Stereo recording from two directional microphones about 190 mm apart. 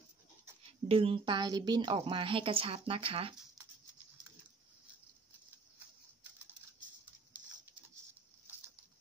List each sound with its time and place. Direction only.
0.8 s a woman's voice: 30° right (ahead or behind)